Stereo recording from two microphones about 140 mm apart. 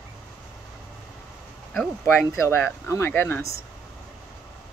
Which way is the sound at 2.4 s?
20° left (ahead or behind).